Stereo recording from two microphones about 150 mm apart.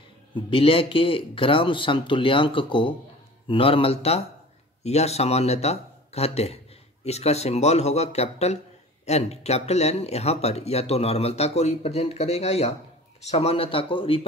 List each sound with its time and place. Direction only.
0.3 s speech: 35° left (ahead or behind)